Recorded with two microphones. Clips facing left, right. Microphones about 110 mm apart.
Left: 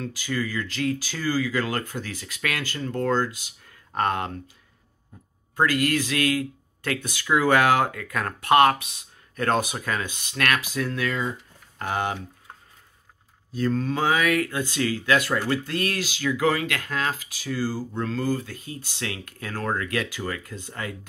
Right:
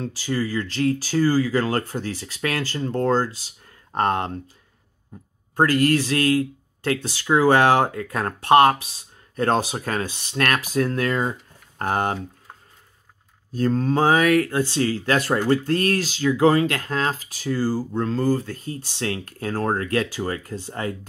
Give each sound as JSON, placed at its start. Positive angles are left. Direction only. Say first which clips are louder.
{"t": 0.0, "sound": "speech", "louder": "right 3 dB", "side_deg": -35}
{"t": 5.6, "sound": "speech", "louder": "right 4 dB", "side_deg": -40}
{"t": 13.5, "sound": "speech", "louder": "right 4 dB", "side_deg": -40}